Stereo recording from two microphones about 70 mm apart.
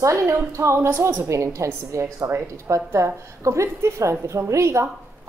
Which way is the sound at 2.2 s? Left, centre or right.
Right.